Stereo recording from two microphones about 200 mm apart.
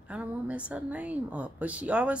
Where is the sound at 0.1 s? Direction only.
5° right (ahead or behind).